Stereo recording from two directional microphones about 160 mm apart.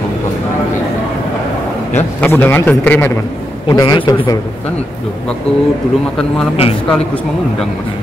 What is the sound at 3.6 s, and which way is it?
Speech, 25° left (ahead or behind).